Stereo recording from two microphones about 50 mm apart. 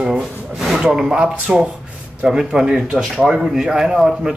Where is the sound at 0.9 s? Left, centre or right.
Centre.